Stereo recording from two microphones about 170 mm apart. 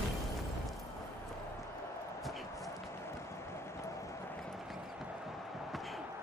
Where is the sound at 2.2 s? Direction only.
Centre (ahead or behind).